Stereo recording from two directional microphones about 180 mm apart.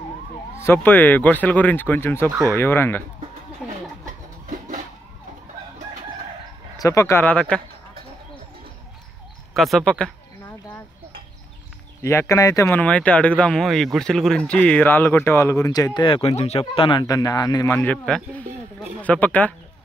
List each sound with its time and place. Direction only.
0.6 s speech: 10° left (ahead or behind)
3.6 s a sound: 5° right (ahead or behind)
6.8 s speech: 15° left (ahead or behind)
9.6 s speech: centre (ahead or behind)
12.0 s speech: 15° left (ahead or behind)
17.9 s speech: 5° left (ahead or behind)